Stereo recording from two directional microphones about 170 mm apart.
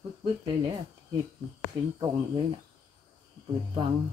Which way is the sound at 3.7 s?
30° right (ahead or behind).